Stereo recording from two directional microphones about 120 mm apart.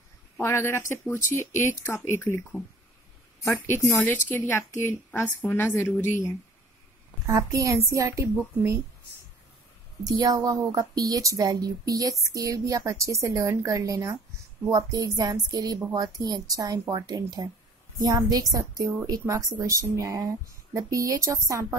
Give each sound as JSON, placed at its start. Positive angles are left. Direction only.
{"t": 0.4, "sound": "speech", "side_deg": 20}
{"t": 3.4, "sound": "a woman's voice", "side_deg": 20}
{"t": 5.9, "sound": "speech", "side_deg": 90}
{"t": 7.2, "sound": "a woman's voice", "side_deg": -25}
{"t": 10.0, "sound": "a woman's voice", "side_deg": -30}